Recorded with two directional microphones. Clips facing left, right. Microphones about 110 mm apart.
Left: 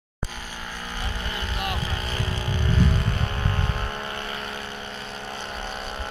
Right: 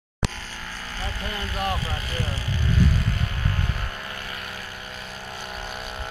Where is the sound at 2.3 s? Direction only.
20° left (ahead or behind).